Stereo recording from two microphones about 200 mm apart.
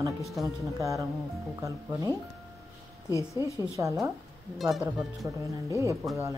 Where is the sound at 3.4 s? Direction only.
15° right (ahead or behind).